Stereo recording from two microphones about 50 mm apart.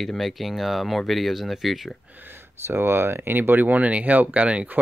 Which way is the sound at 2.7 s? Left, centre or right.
Right.